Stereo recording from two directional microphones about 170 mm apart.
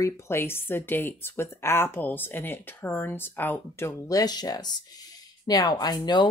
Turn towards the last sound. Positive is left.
turn(degrees=25)  # may be behind; listen again after turning